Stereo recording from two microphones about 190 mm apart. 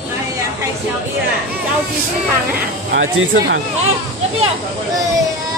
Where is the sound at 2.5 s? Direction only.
80° right.